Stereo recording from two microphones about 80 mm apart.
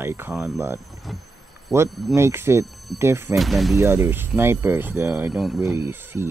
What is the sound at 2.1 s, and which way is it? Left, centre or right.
Speech, right.